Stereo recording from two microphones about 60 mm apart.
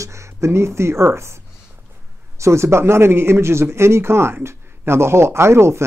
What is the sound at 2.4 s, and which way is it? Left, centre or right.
Speech, right.